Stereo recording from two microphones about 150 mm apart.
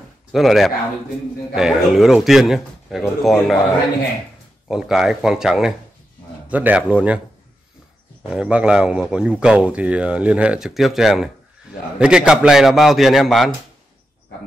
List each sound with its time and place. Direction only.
0.3 s speech: centre (ahead or behind)
4.6 s speech: 5° right (ahead or behind)
8.3 s speech: 5° right (ahead or behind)